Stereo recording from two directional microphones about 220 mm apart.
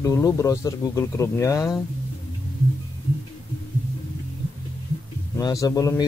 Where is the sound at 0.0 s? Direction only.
15° left (ahead or behind).